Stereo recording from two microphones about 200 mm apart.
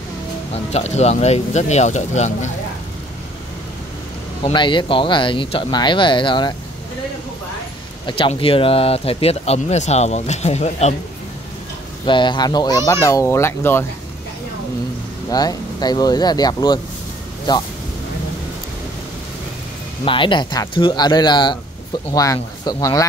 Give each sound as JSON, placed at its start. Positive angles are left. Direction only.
{"t": 0.7, "sound": "speech", "side_deg": 35}
{"t": 4.4, "sound": "speech", "side_deg": 25}
{"t": 8.1, "sound": "speech", "side_deg": 25}
{"t": 12.1, "sound": "speech", "side_deg": 25}
{"t": 15.2, "sound": "speech", "side_deg": 20}
{"t": 20.1, "sound": "speech", "side_deg": 25}